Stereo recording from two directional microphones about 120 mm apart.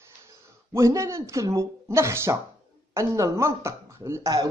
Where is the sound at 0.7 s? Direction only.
25° right (ahead or behind).